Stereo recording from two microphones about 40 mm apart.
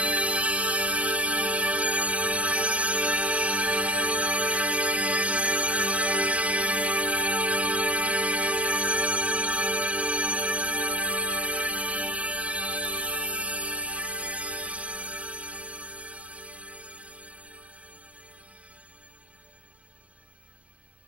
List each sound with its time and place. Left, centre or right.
0.0 s music: right